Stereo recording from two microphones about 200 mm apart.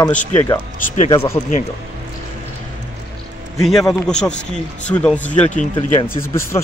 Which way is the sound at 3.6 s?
Centre (ahead or behind).